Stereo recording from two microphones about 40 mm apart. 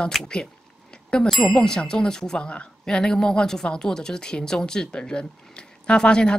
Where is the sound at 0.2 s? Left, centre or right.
Centre.